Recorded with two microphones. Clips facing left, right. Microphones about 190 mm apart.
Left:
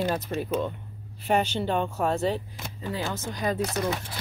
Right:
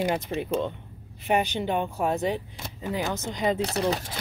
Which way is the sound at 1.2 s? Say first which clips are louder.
Even; 15° right (ahead or behind).